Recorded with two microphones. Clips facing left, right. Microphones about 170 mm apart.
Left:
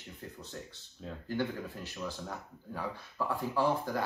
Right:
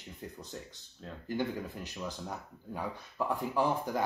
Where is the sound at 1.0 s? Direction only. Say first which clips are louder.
Left 2 dB; 5° left (ahead or behind).